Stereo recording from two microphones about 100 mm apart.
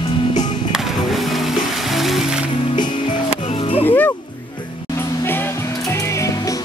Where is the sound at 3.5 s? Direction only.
75° left (ahead or behind).